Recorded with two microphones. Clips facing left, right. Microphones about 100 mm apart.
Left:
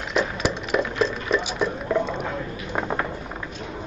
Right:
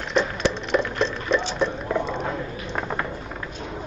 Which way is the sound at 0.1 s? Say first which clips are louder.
Right 1 dB; 5° left (ahead or behind).